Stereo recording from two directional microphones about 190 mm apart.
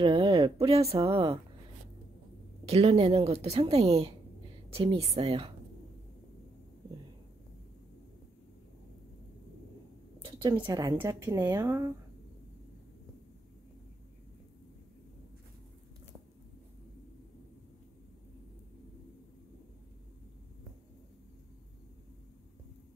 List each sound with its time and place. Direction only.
0.0 s a sound: 25° right (ahead or behind)
0.7 s speech: 30° right (ahead or behind)
2.6 s speech: 30° right (ahead or behind)
10.6 s a woman's voice: 20° right (ahead or behind)